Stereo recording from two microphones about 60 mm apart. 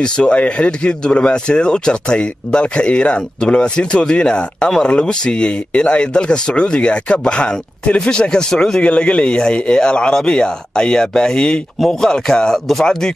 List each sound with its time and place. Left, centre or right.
0.0 s speech: centre